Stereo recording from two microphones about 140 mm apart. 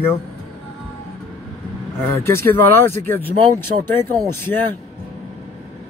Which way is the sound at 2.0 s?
15° left (ahead or behind).